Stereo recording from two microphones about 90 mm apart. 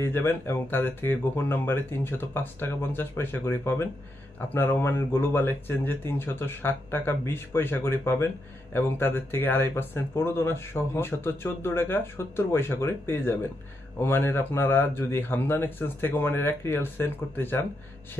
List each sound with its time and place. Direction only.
0.0 s speech: 25° left (ahead or behind)